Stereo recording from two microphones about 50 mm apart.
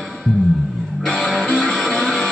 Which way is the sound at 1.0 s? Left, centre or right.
Centre.